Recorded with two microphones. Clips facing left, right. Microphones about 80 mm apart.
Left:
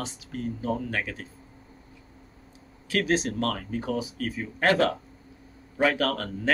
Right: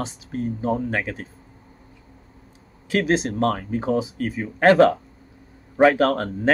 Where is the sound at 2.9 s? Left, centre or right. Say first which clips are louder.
Right 4 dB; right.